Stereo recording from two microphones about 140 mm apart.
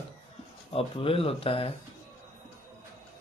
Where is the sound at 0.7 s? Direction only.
40° left (ahead or behind).